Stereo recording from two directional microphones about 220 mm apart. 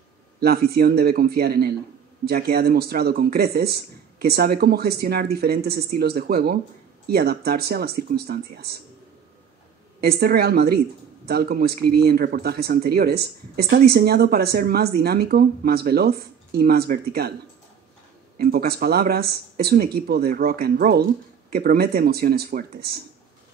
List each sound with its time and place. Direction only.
0.4 s speech: 45° right (ahead or behind)
9.9 s speech: 45° right (ahead or behind)
18.4 s speech: 45° right (ahead or behind)